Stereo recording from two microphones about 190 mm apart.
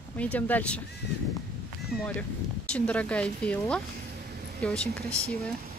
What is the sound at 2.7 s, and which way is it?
A woman's voice, 5° left (ahead or behind).